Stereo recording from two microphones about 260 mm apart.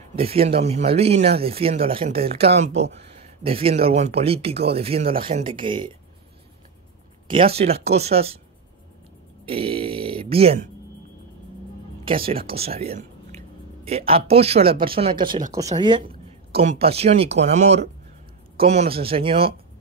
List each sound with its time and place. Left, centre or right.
0.1 s speech: right
7.2 s speech: right
9.5 s speech: right
12.0 s speech: right